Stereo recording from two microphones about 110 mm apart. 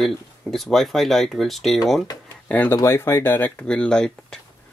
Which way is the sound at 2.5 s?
15° left (ahead or behind).